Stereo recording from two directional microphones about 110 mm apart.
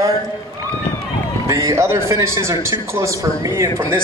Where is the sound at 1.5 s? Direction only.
30° right (ahead or behind).